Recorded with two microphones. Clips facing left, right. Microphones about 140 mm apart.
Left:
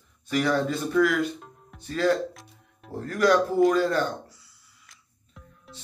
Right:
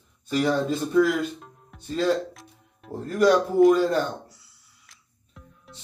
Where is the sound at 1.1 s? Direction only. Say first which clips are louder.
Left 1 dB; centre (ahead or behind).